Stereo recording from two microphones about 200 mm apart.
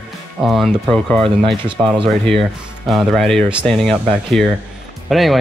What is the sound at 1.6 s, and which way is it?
Speech, 25° right (ahead or behind).